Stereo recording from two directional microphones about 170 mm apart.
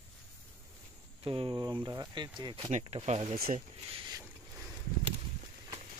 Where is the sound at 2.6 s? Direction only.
40° right (ahead or behind).